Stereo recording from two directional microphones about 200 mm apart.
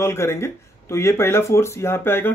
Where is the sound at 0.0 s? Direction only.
15° left (ahead or behind).